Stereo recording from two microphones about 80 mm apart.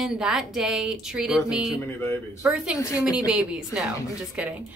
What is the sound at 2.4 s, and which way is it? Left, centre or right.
A woman's voice, centre.